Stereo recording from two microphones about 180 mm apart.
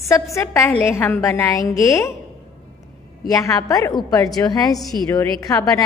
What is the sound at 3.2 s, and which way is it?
A woman's voice, 20° left (ahead or behind).